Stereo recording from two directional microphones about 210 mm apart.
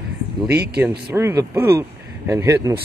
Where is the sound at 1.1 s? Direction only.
10° right (ahead or behind).